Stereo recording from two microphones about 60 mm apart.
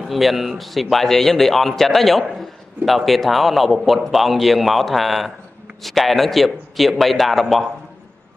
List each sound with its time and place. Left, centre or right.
0.1 s speech: centre